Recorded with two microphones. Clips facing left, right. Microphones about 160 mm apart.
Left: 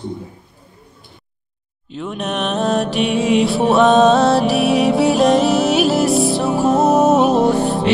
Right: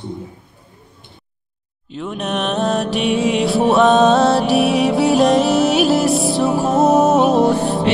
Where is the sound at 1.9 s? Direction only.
Centre (ahead or behind).